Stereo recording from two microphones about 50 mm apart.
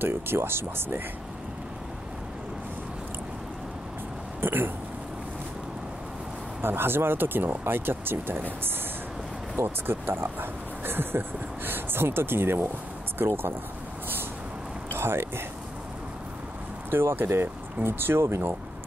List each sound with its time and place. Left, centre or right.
0.0 s speech: right
4.4 s speech: right
6.6 s speech: right
14.9 s a sound: right
16.9 s speech: right